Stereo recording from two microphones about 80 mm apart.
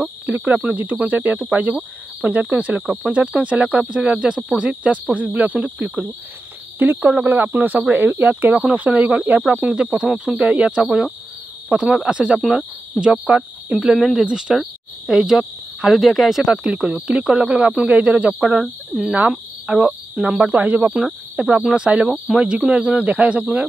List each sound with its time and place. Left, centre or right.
0.3 s speech: centre
11.7 s cricket: centre
12.1 s speech: centre
12.4 s cricket: centre
13.0 s speech: centre
13.7 s cricket: centre
17.1 s speech: centre
19.2 s cricket: centre
20.2 s speech: centre